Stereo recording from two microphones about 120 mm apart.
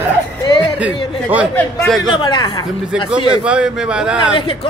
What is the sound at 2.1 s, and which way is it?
Speech, 40° left (ahead or behind).